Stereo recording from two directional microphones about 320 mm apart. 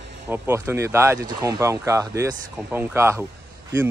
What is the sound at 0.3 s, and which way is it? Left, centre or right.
Speech, centre.